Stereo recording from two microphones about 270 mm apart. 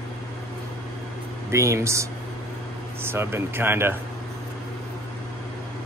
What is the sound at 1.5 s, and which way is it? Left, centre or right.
Speech, centre.